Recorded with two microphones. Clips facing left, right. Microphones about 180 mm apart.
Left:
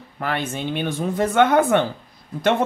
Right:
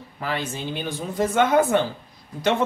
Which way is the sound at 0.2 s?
60° left (ahead or behind).